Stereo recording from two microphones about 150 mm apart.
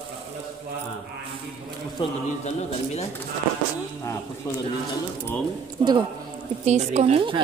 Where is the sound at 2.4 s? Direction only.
45° left (ahead or behind).